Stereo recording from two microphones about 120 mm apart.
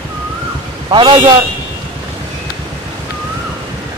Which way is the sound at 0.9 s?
40° right (ahead or behind).